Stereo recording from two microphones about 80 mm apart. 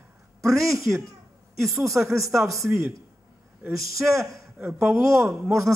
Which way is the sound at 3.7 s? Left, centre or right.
Right.